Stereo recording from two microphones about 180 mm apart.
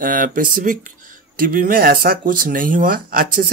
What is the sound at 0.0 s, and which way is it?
Speech, 50° right (ahead or behind).